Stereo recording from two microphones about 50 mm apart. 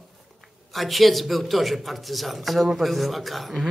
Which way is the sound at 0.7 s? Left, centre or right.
Centre.